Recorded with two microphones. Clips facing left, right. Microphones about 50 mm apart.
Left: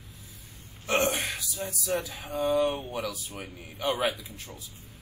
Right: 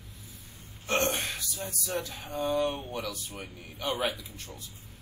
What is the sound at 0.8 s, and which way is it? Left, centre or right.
Speech, centre.